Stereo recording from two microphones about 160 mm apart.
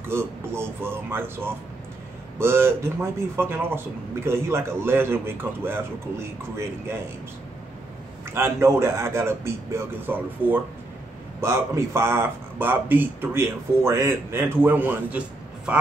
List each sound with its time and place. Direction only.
0.1 s a man's voice: 15° right (ahead or behind)
8.3 s a man's voice: 15° right (ahead or behind)